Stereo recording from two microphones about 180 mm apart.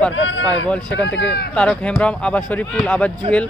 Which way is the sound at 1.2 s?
65° left (ahead or behind).